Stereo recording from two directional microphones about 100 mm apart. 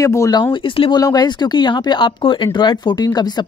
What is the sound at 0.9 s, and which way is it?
Speech, 45° left (ahead or behind).